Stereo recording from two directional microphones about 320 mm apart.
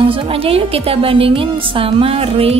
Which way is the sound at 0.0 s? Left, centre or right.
Centre.